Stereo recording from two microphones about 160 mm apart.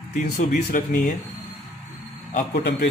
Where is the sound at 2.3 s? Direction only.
80° left.